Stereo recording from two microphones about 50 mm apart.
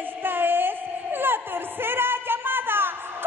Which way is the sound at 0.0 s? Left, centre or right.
Right.